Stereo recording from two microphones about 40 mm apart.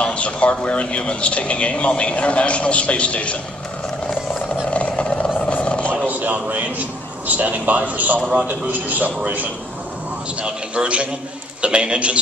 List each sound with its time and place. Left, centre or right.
0.0 s speech: left
4.6 s vehicle: left
6.0 s a man's voice: right
10.4 s a man's voice: right